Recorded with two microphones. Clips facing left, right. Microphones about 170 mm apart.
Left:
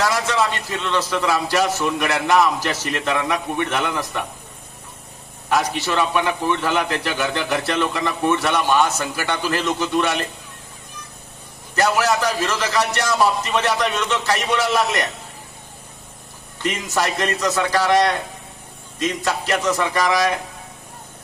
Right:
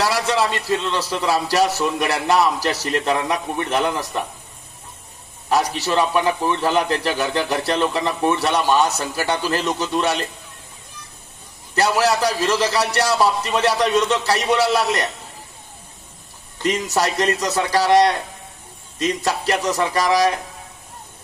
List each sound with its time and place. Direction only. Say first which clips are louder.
0.0 s a man's voice: right 1 dB; 35° right (ahead or behind)
5.5 s a man's voice: right 1 dB; 35° right (ahead or behind)
11.7 s a man's voice: right 1 dB; 35° right (ahead or behind)
16.6 s a man's voice: right 2 dB; 35° right (ahead or behind)